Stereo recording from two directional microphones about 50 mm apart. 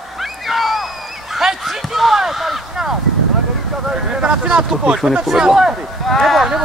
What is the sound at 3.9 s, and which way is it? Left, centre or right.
Speech, centre.